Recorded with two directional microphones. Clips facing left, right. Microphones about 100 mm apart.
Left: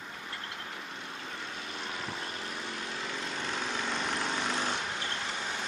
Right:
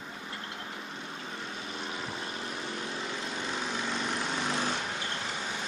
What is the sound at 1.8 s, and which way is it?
Vehicle, 20° right (ahead or behind).